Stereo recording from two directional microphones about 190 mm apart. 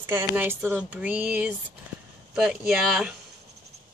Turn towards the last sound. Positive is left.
turn(degrees=-5)  # may be behind; listen again after turning